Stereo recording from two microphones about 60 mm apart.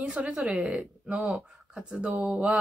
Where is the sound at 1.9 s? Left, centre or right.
Centre.